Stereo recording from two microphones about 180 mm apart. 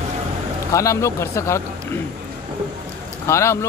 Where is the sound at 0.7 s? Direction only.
15° left (ahead or behind).